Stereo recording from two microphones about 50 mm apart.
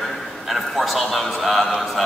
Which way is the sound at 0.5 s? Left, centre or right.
Centre.